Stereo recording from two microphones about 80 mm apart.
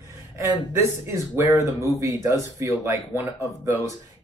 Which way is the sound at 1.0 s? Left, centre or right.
Right.